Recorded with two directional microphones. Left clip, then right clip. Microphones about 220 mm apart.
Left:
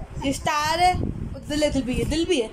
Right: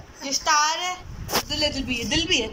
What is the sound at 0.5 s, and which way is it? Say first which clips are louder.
Baby laughter: left 1 dB; 20° left (ahead or behind).